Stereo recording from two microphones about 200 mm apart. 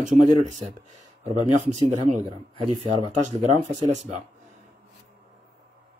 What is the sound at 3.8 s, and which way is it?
Speech, 35° right (ahead or behind).